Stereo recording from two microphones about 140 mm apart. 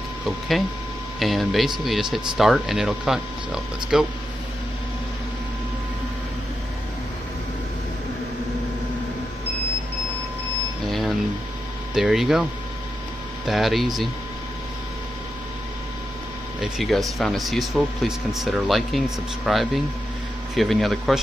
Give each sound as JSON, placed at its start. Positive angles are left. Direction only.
{"t": 1.2, "sound": "speech", "side_deg": 0}
{"t": 10.9, "sound": "a sound", "side_deg": 0}
{"t": 11.9, "sound": "speech", "side_deg": -5}
{"t": 13.5, "sound": "speech", "side_deg": 0}
{"t": 16.6, "sound": "speech", "side_deg": 0}